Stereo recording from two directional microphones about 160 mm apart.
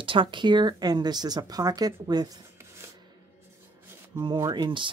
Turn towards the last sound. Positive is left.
turn(degrees=-30)  # may be behind; listen again after turning